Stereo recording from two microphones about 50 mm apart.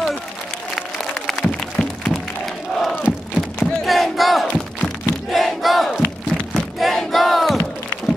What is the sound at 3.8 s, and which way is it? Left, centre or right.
Battle cry, centre.